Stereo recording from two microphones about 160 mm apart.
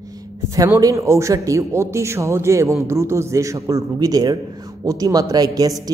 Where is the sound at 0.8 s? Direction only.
20° right (ahead or behind).